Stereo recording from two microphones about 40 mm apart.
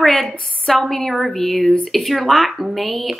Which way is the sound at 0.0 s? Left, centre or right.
Centre.